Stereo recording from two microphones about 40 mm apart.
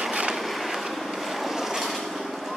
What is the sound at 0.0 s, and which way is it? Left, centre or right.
Vehicle, right.